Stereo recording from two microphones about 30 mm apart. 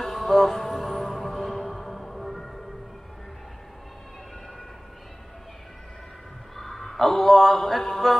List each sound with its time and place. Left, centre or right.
0.0 s music: centre
6.5 s a sound: centre
7.5 s mantra: centre